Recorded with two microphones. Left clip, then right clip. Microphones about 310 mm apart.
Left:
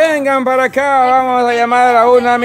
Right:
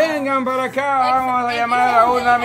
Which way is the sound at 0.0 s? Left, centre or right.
Centre.